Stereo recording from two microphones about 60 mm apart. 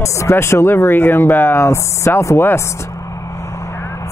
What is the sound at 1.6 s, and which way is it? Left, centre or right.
Speech, left.